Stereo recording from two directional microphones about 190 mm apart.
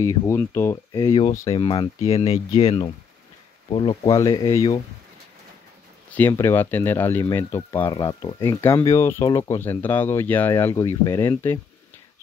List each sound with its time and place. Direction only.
0.0 s speech: 15° left (ahead or behind)
1.5 s speech: 30° left (ahead or behind)
6.1 s speech: 10° left (ahead or behind)